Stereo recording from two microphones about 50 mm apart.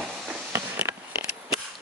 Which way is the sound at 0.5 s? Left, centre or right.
Right.